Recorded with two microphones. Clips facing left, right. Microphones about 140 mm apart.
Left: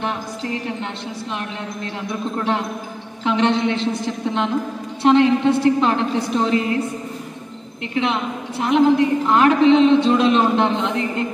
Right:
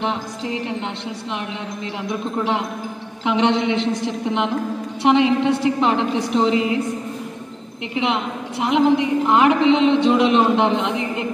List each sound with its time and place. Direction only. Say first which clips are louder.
0.0 s music: right 1 dB; 20° right (ahead or behind)
2.0 s a woman's voice: even; 15° right (ahead or behind)
7.9 s a woman's voice: even; 15° right (ahead or behind)